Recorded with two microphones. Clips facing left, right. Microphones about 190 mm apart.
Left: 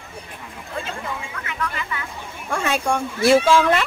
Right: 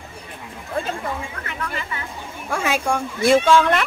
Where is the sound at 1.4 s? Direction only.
35° right (ahead or behind).